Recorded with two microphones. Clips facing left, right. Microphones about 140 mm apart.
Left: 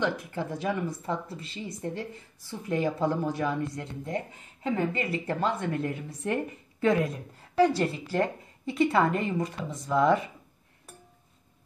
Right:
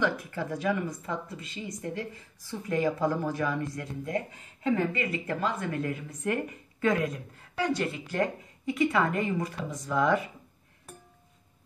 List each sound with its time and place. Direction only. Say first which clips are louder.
0.0 s a woman's voice: even; 20° left (ahead or behind)
7.5 s a woman's voice: left 6 dB; 35° left (ahead or behind)